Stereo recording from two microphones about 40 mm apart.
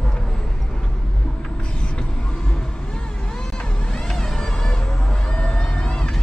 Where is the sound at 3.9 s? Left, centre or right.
Centre.